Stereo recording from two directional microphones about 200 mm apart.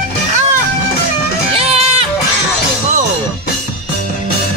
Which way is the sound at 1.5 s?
30° right (ahead or behind).